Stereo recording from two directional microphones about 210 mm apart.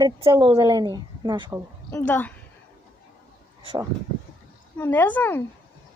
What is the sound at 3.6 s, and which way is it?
Speech, 20° right (ahead or behind).